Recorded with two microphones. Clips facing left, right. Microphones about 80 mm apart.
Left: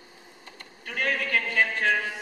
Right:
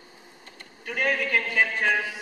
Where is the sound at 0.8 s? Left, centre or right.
Centre.